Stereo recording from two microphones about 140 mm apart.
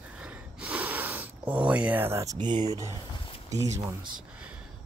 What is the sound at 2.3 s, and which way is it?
Speech, 35° right (ahead or behind).